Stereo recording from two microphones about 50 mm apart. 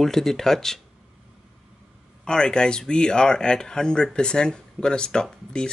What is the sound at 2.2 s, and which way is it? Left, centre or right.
Speech, centre.